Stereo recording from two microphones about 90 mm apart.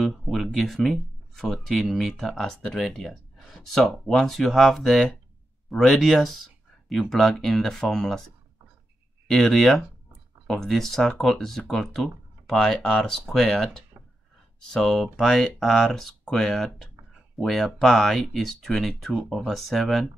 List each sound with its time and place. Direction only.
0.0 s speech: centre (ahead or behind)
9.3 s speech: 5° left (ahead or behind)